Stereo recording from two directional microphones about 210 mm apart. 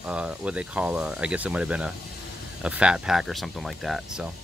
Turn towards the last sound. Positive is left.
turn(degrees=0)  # may be behind; listen again after turning